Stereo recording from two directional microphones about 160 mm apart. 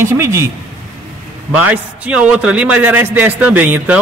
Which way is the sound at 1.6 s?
10° right (ahead or behind).